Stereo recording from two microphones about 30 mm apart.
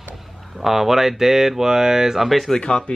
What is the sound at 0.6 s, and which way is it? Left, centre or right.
Speech, centre.